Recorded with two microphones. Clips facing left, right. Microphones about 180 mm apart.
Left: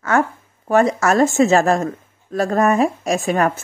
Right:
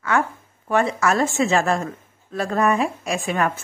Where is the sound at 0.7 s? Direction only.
40° left (ahead or behind).